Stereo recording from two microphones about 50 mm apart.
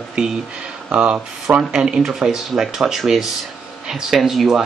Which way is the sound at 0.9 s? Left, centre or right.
Right.